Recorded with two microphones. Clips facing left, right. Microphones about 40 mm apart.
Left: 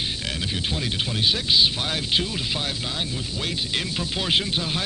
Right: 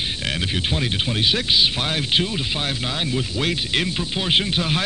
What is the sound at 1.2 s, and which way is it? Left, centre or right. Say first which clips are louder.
Speech: right 1 dB; right.